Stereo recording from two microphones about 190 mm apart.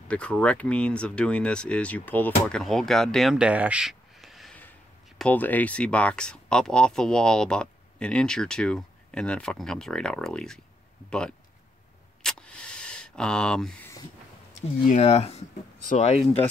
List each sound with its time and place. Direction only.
0.1 s speech: 5° left (ahead or behind)
12.2 s a sound: 5° left (ahead or behind)
14.9 s speech: 35° left (ahead or behind)